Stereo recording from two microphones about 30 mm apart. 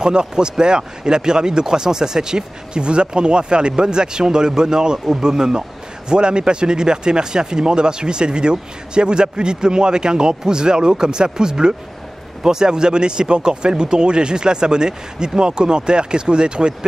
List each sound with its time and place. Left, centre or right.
0.0 s speech: right